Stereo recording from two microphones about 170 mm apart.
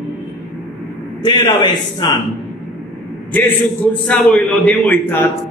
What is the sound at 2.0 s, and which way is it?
Speech, 25° left (ahead or behind).